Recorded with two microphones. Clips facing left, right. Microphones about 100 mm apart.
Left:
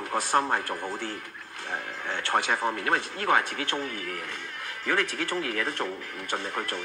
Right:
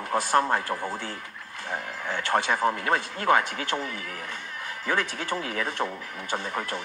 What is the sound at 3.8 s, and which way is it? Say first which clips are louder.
Speech: left 1 dB; 40° left (ahead or behind).